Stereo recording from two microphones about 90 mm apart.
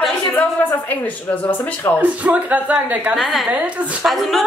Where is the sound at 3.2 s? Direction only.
Centre (ahead or behind).